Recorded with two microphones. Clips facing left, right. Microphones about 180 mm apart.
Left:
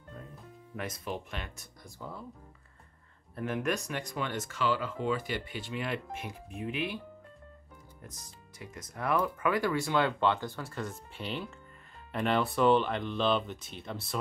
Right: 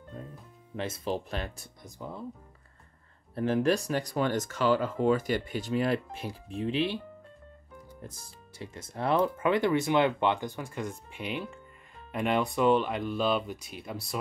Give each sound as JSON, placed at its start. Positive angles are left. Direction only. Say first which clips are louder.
{"t": 0.2, "sound": "music", "louder": "right 5 dB", "side_deg": -30}
{"t": 0.7, "sound": "speech", "louder": "right 5 dB", "side_deg": -30}
{"t": 1.8, "sound": "speech", "louder": "right 3 dB", "side_deg": -20}
{"t": 3.3, "sound": "speech", "louder": "right 6 dB", "side_deg": -30}
{"t": 8.0, "sound": "speech", "louder": "right 4 dB", "side_deg": -30}